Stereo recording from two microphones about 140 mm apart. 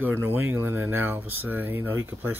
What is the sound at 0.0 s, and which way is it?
Speech, 15° right (ahead or behind).